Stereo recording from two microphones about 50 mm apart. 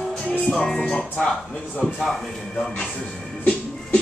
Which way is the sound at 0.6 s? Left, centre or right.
Centre.